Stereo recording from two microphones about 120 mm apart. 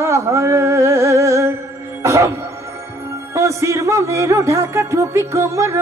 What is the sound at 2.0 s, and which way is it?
Music, 25° right (ahead or behind).